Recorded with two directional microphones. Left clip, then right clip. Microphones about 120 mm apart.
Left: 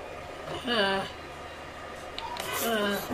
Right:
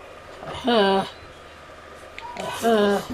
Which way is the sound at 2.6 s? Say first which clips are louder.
Right 11 dB; 70° right (ahead or behind).